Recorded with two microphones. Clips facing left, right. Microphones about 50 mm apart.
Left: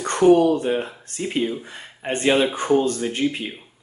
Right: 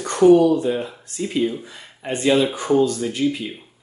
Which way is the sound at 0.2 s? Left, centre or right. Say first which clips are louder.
Right 2 dB; left.